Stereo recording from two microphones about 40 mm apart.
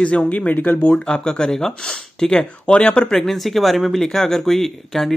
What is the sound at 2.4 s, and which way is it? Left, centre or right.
Speech, left.